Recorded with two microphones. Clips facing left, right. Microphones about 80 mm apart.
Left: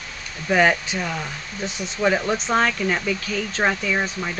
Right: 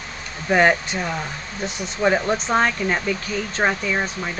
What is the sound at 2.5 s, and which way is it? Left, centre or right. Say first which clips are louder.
Speech: even; centre.